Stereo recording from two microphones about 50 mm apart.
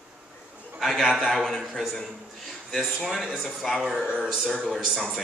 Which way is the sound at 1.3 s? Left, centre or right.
Centre.